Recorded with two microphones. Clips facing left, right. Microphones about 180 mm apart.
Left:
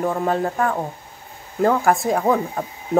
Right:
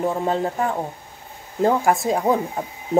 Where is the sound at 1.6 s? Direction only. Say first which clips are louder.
Left 1 dB; 20° right (ahead or behind).